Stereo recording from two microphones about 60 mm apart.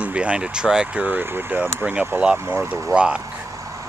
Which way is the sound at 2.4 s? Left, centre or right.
Right.